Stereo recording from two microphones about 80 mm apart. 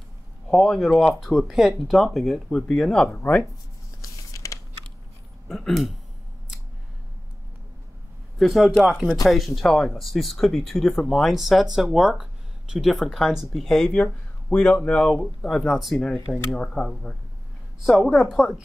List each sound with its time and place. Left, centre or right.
0.5 s speech: centre
4.0 s a sound: left
5.5 s speech: centre
8.4 s speech: centre